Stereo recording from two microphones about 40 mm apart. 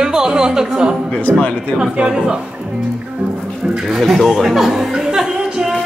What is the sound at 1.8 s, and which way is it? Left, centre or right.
Speech, right.